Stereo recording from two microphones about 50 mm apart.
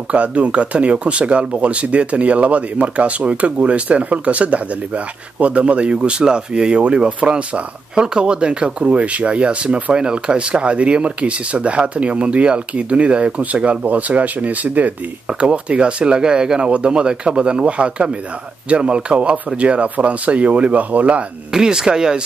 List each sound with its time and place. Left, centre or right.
0.1 s speech: right
21.5 s speech: centre